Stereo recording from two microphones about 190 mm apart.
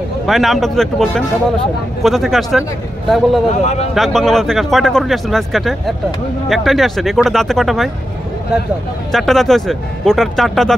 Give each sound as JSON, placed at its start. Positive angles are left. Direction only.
{"t": 0.3, "sound": "speech", "side_deg": 0}
{"t": 3.6, "sound": "a man's voice", "side_deg": 35}
{"t": 3.9, "sound": "speech", "side_deg": 0}
{"t": 9.1, "sound": "speech", "side_deg": 0}